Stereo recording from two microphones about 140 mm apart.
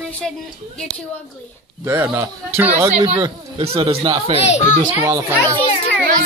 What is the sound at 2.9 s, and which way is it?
Speech, 45° right (ahead or behind).